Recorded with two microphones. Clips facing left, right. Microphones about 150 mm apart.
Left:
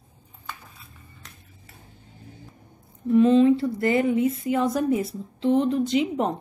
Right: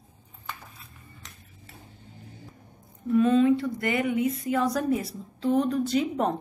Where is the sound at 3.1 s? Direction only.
25° left (ahead or behind).